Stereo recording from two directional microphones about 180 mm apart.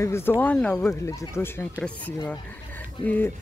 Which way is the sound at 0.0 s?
15° left (ahead or behind).